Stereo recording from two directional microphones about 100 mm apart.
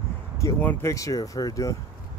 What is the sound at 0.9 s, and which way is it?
Speech, 35° left (ahead or behind).